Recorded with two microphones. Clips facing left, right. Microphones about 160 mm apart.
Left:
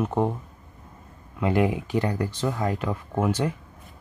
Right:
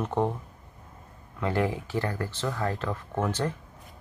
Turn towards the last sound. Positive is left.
turn(degrees=10)  # may be behind; listen again after turning